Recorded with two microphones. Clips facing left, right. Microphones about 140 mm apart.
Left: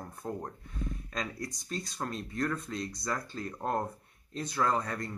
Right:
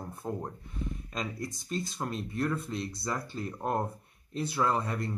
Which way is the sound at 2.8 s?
30° right (ahead or behind).